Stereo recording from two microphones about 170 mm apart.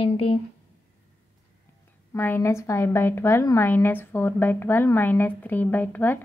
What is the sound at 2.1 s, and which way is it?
A woman's voice, 15° left (ahead or behind).